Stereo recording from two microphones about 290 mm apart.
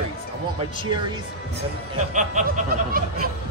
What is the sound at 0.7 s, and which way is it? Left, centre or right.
Speech, centre.